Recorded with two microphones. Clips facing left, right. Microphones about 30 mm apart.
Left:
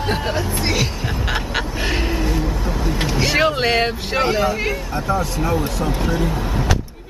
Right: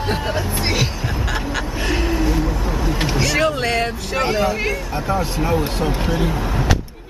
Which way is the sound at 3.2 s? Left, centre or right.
Left.